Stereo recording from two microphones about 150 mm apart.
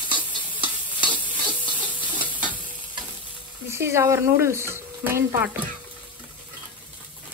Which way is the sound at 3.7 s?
15° right (ahead or behind).